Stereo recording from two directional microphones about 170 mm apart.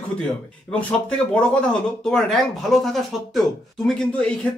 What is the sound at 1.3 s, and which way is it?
Speech, 5° left (ahead or behind).